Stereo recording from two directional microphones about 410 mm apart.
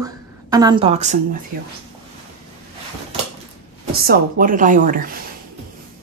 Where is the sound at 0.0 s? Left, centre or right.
Centre.